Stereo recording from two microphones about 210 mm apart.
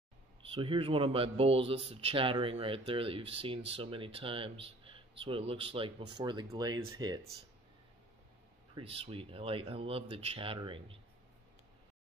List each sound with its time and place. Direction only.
0.6 s speech: 25° right (ahead or behind)
8.7 s speech: 25° right (ahead or behind)